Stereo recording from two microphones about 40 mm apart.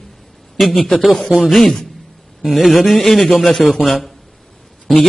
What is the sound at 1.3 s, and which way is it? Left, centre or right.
A man's voice, centre.